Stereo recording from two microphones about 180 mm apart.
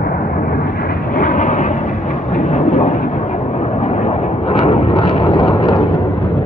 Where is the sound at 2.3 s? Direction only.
40° left (ahead or behind).